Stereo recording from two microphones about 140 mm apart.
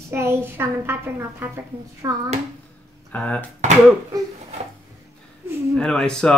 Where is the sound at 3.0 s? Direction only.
10° left (ahead or behind).